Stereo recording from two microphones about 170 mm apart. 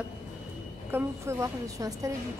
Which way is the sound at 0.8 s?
15° right (ahead or behind).